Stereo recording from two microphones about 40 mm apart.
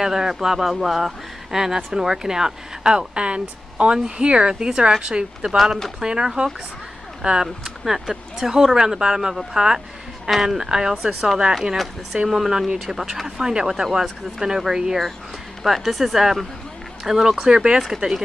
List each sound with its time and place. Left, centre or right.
0.0 s speech: centre
7.6 s speech: centre
12.1 s speech: centre
15.6 s speech: centre
17.7 s speech: centre